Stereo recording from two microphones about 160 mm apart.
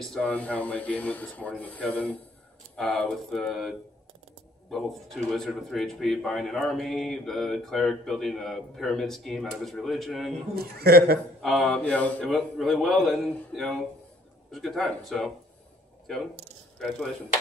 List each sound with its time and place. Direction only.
0.0 s speech: 5° left (ahead or behind)
10.5 s a man's voice: 80° right
11.4 s speech: 5° left (ahead or behind)